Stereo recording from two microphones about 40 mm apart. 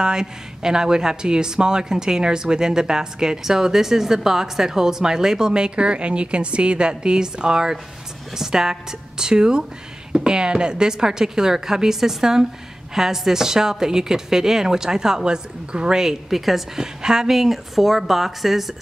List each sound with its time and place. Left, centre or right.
0.0 s speech: centre